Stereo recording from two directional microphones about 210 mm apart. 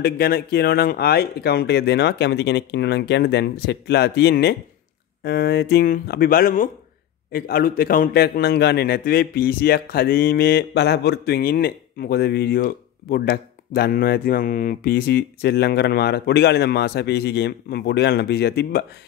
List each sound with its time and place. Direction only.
0.0 s a man's voice: 45° left (ahead or behind)